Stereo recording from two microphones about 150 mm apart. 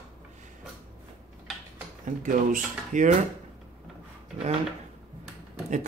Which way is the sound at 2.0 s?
60° right (ahead or behind).